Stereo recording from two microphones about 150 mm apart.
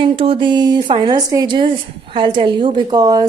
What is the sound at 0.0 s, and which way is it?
A woman's voice, 35° right (ahead or behind).